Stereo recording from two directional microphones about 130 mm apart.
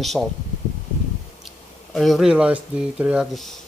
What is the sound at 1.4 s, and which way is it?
Speech, centre (ahead or behind).